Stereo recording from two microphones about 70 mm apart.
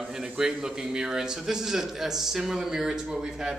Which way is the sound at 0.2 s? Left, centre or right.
Centre.